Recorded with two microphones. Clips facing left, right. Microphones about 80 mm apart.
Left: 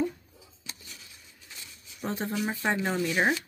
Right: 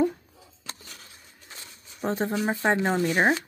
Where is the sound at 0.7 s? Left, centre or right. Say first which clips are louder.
Right 4 dB; right.